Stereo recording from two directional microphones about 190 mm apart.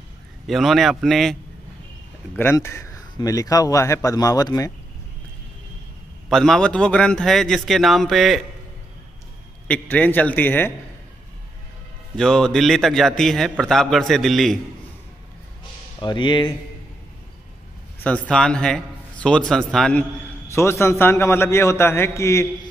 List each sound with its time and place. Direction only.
0.5 s a man's voice: centre (ahead or behind)
2.3 s a man's voice: 15° left (ahead or behind)
6.2 s a man's voice: centre (ahead or behind)
9.7 s a man's voice: 10° left (ahead or behind)
12.2 s a man's voice: 5° left (ahead or behind)
16.0 s speech: 25° left (ahead or behind)
18.0 s a man's voice: 5° left (ahead or behind)